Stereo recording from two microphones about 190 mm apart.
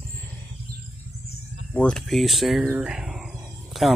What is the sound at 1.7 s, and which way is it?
Speech, 5° left (ahead or behind).